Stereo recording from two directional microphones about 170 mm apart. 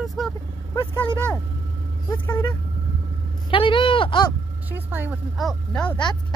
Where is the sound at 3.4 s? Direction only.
30° left (ahead or behind).